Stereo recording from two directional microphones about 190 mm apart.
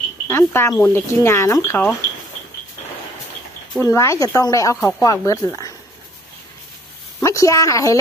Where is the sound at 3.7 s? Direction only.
15° left (ahead or behind).